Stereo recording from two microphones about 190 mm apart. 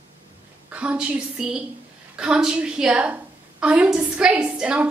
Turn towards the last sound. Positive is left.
turn(degrees=-5)  # may be behind; listen again after turning